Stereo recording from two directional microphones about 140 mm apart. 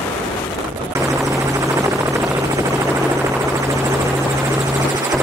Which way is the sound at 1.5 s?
20° right (ahead or behind).